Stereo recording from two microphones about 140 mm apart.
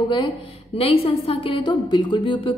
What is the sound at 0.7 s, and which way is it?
A woman's voice, 45° left (ahead or behind).